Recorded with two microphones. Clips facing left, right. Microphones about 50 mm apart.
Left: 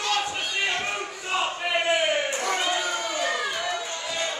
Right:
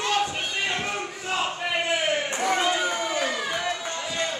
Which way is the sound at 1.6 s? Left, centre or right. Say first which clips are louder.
Left 2 dB; centre.